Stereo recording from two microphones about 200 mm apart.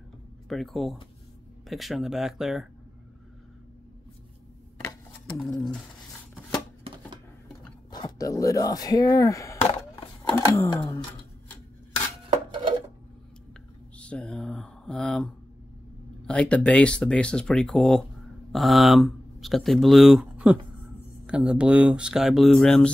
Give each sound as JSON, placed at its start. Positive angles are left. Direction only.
{"t": 0.5, "sound": "speech", "side_deg": 0}
{"t": 4.8, "sound": "shuffling cards", "side_deg": 5}
{"t": 7.9, "sound": "speech", "side_deg": 20}
{"t": 10.8, "sound": "a sound", "side_deg": 20}
{"t": 12.3, "sound": "dishes", "side_deg": -25}
{"t": 13.9, "sound": "speech", "side_deg": 5}